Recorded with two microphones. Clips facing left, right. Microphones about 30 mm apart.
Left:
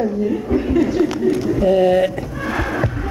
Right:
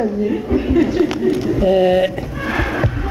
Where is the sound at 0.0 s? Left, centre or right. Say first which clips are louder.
Right 1 dB; right.